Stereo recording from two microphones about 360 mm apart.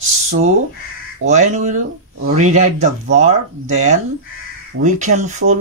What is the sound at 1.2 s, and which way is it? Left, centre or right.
Speech, centre.